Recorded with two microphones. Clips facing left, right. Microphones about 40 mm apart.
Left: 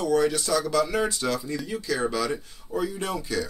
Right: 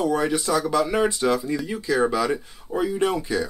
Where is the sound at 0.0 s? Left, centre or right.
Right.